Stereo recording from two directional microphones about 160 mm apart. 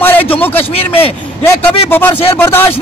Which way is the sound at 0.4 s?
10° left (ahead or behind).